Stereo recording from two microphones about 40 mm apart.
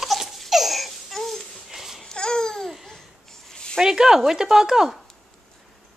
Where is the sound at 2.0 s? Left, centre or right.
Centre.